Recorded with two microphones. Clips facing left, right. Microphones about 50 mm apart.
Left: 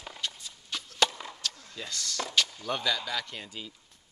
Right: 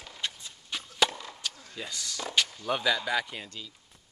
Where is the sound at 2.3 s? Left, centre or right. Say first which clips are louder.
Right 2 dB; centre.